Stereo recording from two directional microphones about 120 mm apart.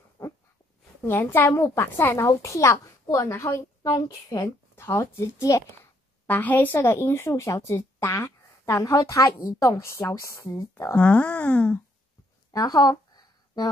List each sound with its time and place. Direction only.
0.2 s dog: 25° left (ahead or behind)
1.0 s speech: 20° left (ahead or behind)
6.2 s speech: 15° left (ahead or behind)
11.0 s speech: 10° left (ahead or behind)
12.4 s a sound: 30° left (ahead or behind)